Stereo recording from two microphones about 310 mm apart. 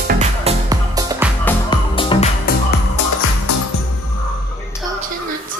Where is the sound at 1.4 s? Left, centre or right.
Centre.